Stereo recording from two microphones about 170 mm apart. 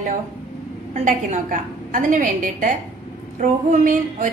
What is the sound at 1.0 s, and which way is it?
A woman's voice, 50° right (ahead or behind).